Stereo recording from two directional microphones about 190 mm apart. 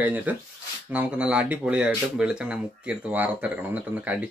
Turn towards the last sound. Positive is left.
turn(degrees=-5)  # may be behind; listen again after turning